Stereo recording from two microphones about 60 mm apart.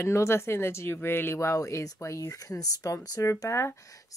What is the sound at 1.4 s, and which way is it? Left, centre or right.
Speech, left.